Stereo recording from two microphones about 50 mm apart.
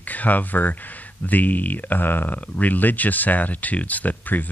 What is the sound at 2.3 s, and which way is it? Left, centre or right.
Speech, left.